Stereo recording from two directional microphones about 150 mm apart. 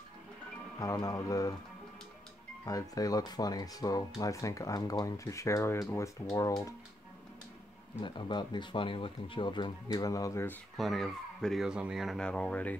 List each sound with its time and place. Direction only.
0.7 s speech: 25° left (ahead or behind)
2.6 s speech: 25° left (ahead or behind)
8.0 s speech: 30° left (ahead or behind)
10.8 s speech: centre (ahead or behind)